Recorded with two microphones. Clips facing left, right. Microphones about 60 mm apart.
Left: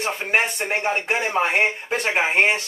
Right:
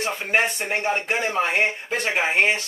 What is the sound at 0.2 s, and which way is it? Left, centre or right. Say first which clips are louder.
Speech: even; left.